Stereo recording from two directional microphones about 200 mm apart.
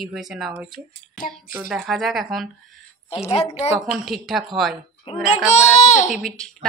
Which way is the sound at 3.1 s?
30° left (ahead or behind).